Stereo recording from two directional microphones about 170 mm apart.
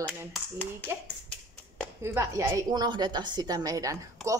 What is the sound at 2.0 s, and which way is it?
A woman's voice, 15° right (ahead or behind).